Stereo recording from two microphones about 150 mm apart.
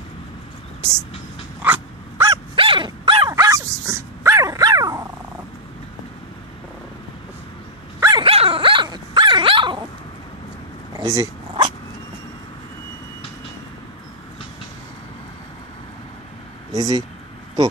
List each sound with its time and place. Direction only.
1.6 s dog: 10° right (ahead or behind)
2.3 s dog: 35° right (ahead or behind)
8.2 s dog: 40° right (ahead or behind)
11.0 s dog: 25° right (ahead or behind)
16.7 s speech: 25° right (ahead or behind)